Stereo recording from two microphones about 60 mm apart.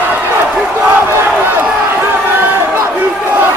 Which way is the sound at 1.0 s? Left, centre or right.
Right.